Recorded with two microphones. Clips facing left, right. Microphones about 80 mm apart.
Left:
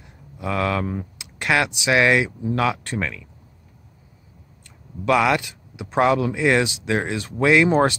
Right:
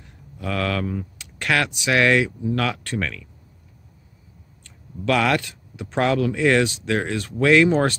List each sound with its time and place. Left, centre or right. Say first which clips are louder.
0.0 s typing: left 2 dB; centre
1.2 s speech: left 1 dB; centre
5.0 s speech: left 2 dB; centre